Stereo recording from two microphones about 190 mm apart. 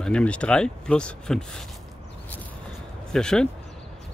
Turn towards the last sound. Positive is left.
turn(degrees=5)  # may be behind; listen again after turning